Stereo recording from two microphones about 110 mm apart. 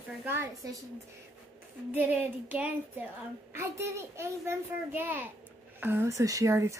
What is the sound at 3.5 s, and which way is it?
A child's voice, 25° right (ahead or behind).